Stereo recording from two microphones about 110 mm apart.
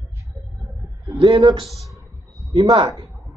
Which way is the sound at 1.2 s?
45° right (ahead or behind).